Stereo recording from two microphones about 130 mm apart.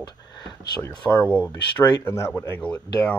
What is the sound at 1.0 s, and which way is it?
Speech, centre (ahead or behind).